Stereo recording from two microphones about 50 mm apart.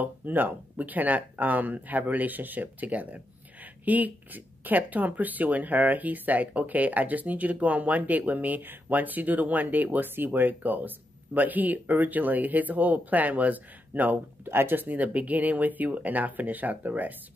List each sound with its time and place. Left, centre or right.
0.0 s speech: right